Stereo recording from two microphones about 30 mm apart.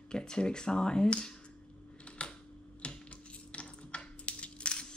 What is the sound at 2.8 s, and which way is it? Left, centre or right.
Coin, left.